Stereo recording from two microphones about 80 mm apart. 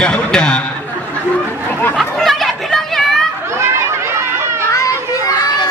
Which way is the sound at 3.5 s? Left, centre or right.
Right.